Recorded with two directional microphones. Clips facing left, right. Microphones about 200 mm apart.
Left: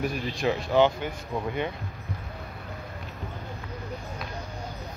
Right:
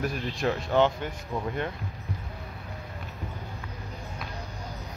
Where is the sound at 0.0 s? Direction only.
Centre (ahead or behind).